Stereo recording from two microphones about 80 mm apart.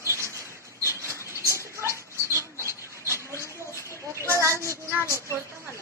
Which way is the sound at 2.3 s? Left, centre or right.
Right.